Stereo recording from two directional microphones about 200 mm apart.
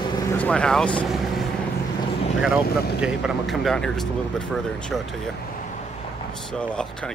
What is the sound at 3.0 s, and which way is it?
Speech, centre (ahead or behind).